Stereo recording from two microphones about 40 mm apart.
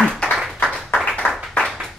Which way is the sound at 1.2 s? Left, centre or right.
Left.